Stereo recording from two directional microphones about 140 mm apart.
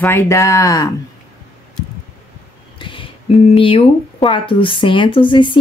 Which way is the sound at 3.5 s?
40° left (ahead or behind).